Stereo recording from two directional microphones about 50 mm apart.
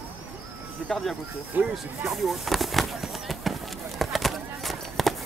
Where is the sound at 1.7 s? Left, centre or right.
Centre.